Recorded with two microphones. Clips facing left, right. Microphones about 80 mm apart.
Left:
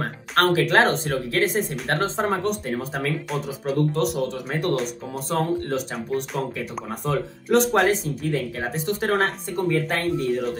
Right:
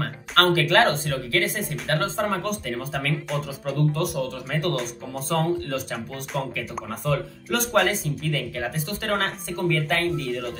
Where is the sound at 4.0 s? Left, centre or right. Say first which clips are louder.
Left 3 dB; left.